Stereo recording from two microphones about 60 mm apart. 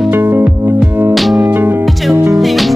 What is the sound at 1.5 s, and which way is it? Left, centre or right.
Music, right.